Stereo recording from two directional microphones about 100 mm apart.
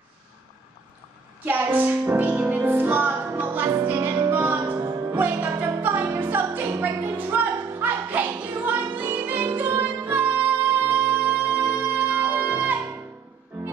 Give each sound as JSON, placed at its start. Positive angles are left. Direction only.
{"t": 1.4, "sound": "music", "side_deg": -20}